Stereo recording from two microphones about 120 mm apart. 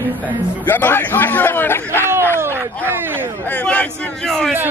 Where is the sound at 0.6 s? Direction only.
15° left (ahead or behind).